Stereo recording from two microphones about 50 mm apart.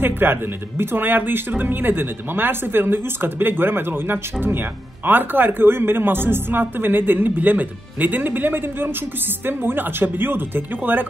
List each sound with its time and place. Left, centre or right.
0.0 s a woman's voice: right